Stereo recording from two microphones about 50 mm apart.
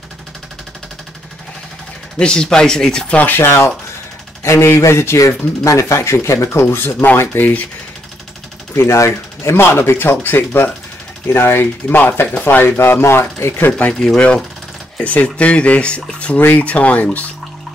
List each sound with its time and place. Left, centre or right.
2.1 s speech: centre
3.2 s speech: left
3.4 s speech: left
7.3 s speech: left
8.7 s speech: left
13.0 s speech: left
13.7 s speech: left
13.9 s speech: centre
15.0 s speech: left
16.3 s speech: left
16.6 s speech: left